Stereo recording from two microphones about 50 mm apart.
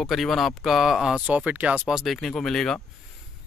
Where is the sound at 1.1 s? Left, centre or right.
Right.